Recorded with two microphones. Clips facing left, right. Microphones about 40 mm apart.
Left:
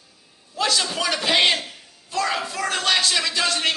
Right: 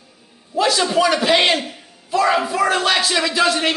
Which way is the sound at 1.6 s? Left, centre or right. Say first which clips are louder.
Right 6 dB; centre.